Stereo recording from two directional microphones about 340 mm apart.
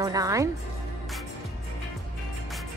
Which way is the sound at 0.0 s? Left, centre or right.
Centre.